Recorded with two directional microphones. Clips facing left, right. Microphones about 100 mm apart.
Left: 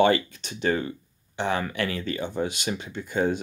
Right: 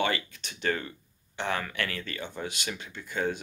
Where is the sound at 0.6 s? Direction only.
20° left (ahead or behind).